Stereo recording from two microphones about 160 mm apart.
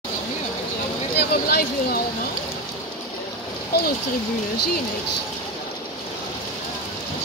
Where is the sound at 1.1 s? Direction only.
75° left (ahead or behind).